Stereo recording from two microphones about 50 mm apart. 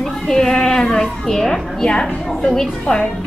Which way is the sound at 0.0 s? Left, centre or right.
Centre.